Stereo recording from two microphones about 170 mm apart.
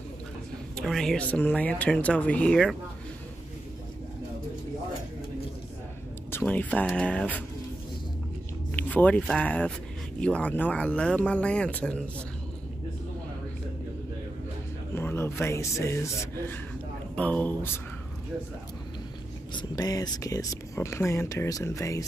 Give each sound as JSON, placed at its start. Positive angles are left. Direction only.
{"t": 0.7, "sound": "speech", "side_deg": 5}
{"t": 6.3, "sound": "speech", "side_deg": 10}
{"t": 8.7, "sound": "speech", "side_deg": 10}
{"t": 15.0, "sound": "speech", "side_deg": 15}
{"t": 17.1, "sound": "speech", "side_deg": 10}
{"t": 19.5, "sound": "speech", "side_deg": 20}